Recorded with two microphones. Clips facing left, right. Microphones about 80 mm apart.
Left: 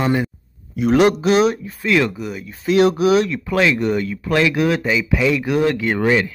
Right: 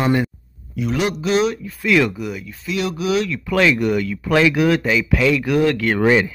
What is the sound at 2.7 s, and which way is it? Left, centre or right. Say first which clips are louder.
Speech: left 7 dB; left.